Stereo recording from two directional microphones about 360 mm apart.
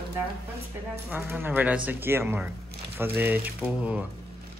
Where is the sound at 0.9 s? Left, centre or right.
Centre.